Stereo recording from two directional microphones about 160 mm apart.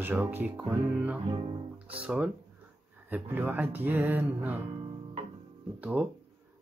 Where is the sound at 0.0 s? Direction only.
15° right (ahead or behind).